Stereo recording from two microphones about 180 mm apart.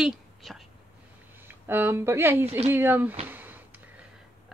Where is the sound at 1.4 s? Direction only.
10° right (ahead or behind).